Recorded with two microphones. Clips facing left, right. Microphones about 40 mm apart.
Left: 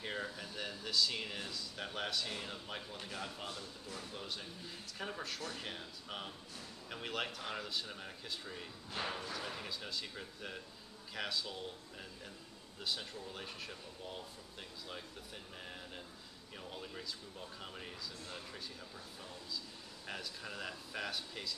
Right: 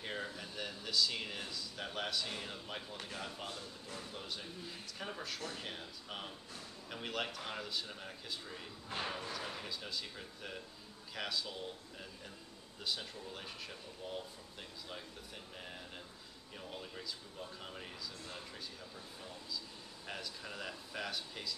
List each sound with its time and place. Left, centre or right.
0.0 s speech: centre
8.9 s battle cry: right
9.3 s speech: centre
12.8 s speech: centre
16.5 s speech: centre
20.1 s speech: centre